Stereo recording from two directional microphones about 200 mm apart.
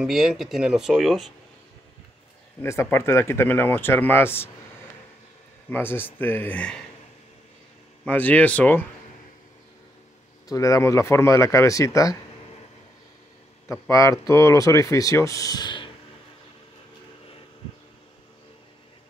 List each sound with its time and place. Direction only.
0.0 s speech: centre (ahead or behind)
2.6 s speech: 15° left (ahead or behind)
5.7 s speech: 10° left (ahead or behind)
8.0 s speech: 10° left (ahead or behind)
10.5 s speech: 15° left (ahead or behind)
13.7 s speech: 15° left (ahead or behind)